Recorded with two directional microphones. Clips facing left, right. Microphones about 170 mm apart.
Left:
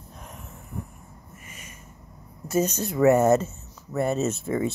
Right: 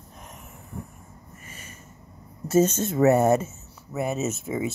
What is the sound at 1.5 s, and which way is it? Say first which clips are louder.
Snort: right 2 dB; 30° right (ahead or behind).